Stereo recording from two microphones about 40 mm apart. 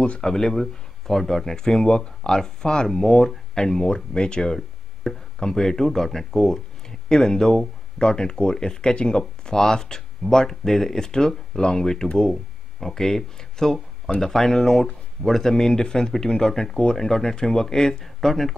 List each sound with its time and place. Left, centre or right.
0.2 s speech: centre